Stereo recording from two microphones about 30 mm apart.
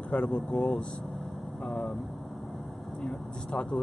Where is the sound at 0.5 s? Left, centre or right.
Centre.